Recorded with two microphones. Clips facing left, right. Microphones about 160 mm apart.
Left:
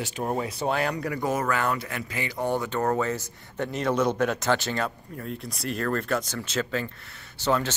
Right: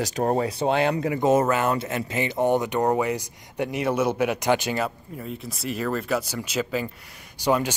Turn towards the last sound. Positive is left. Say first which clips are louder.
# right 3 dB
turn(degrees=-15)  # may be behind; listen again after turning